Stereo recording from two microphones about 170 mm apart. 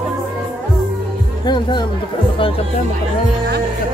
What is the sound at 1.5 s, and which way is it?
Music, 25° left (ahead or behind).